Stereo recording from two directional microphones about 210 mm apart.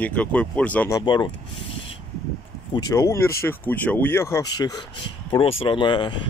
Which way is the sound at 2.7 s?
15° left (ahead or behind).